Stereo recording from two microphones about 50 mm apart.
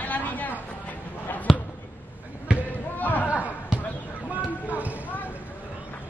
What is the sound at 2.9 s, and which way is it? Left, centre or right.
Chatter, left.